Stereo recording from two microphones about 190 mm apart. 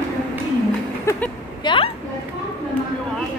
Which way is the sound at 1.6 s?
25° left (ahead or behind).